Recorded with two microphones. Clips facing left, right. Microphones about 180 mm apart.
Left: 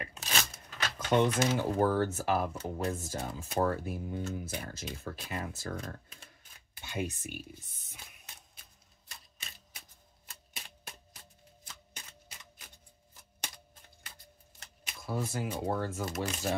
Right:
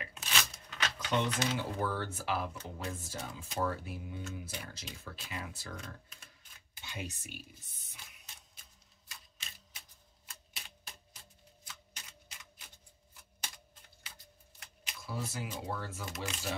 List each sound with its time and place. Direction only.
0.0 s a sound: 40° left (ahead or behind)
0.9 s speech: 50° left (ahead or behind)
10.5 s typewriter: 55° left (ahead or behind)
14.6 s speech: 50° left (ahead or behind)